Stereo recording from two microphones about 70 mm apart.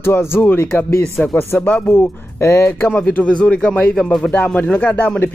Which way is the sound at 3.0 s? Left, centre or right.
Centre.